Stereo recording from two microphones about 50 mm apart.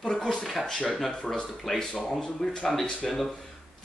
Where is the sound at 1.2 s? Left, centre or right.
Centre.